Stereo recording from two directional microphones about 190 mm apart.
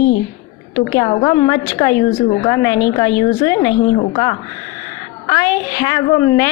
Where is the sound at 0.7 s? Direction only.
15° left (ahead or behind).